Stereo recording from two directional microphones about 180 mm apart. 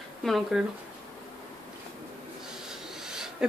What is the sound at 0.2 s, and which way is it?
Speech, centre (ahead or behind).